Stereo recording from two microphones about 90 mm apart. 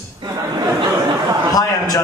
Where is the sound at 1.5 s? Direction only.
45° left (ahead or behind).